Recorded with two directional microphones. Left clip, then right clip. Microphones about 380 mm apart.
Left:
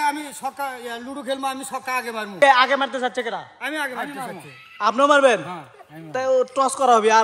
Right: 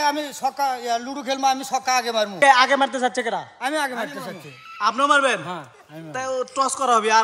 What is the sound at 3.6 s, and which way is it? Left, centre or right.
Speech, right.